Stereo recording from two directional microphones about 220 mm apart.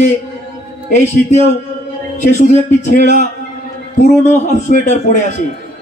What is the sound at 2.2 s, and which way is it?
A man's voice, 35° left (ahead or behind).